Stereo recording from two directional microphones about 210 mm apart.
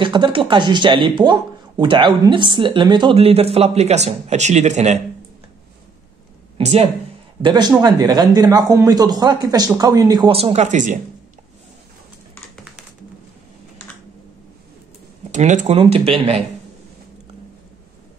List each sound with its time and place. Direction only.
0.0 s speech: 20° right (ahead or behind)
6.6 s speech: 30° right (ahead or behind)
15.3 s speech: 35° right (ahead or behind)